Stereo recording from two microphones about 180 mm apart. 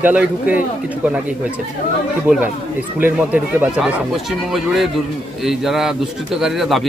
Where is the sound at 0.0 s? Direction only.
10° right (ahead or behind).